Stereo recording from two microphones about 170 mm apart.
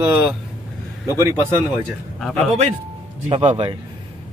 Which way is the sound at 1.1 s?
15° right (ahead or behind).